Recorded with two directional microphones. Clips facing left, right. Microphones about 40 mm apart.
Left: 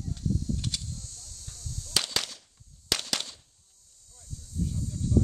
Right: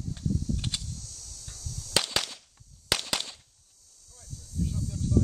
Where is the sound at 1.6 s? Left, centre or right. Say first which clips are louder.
Even; left.